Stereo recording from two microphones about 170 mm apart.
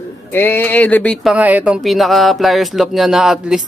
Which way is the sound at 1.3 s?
10° right (ahead or behind).